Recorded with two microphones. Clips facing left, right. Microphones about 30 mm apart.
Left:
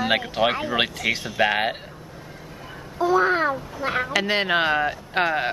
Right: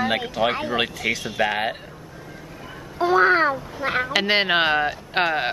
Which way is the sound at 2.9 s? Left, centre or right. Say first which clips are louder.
Right 3 dB; right.